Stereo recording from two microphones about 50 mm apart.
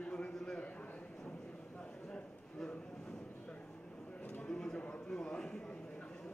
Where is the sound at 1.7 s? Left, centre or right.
Centre.